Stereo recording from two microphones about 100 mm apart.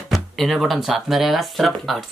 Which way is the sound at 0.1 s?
Centre (ahead or behind).